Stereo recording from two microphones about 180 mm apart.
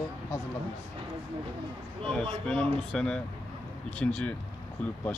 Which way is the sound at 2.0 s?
5° left (ahead or behind).